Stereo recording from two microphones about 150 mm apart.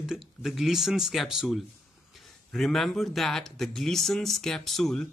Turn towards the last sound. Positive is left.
turn(degrees=5)  # may be behind; listen again after turning